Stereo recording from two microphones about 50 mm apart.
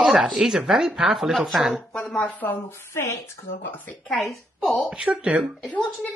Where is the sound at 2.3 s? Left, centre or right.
Left.